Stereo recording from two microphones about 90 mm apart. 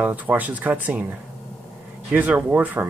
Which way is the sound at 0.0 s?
20° right (ahead or behind).